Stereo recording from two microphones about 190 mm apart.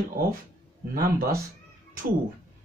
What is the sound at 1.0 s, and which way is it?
Speech, 50° right (ahead or behind).